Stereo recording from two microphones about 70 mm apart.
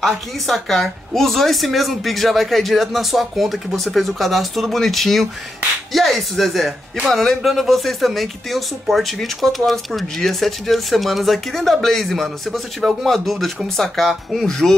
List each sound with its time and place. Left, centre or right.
0.0 s a woman's voice: centre